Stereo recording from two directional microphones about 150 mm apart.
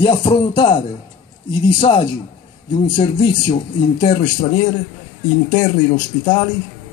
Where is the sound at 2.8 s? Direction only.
30° left (ahead or behind).